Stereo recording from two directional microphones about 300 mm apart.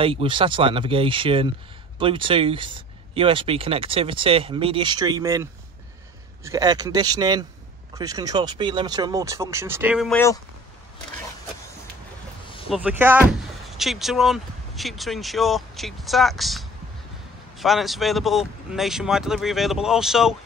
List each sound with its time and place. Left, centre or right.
0.0 s speech: centre
12.6 s speech: centre